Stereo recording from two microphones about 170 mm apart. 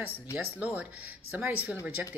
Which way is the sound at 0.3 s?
10° right (ahead or behind).